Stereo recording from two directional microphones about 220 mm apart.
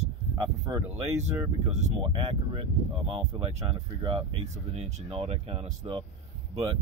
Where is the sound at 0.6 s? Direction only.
15° right (ahead or behind).